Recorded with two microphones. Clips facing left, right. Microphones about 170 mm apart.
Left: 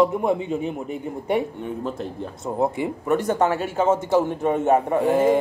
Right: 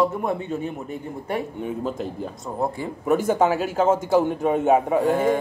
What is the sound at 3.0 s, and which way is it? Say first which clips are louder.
A man's voice: right 2 dB; 5° right (ahead or behind).